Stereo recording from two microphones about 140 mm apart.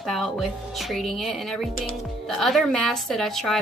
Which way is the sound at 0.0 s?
Centre (ahead or behind).